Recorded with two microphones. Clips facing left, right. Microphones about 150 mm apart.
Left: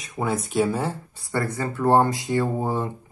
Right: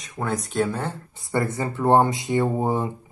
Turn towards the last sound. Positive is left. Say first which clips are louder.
# right 2 dB
turn(degrees=-20)  # may be behind; listen again after turning